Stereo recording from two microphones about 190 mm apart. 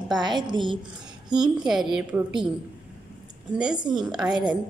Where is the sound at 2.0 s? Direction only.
5° right (ahead or behind).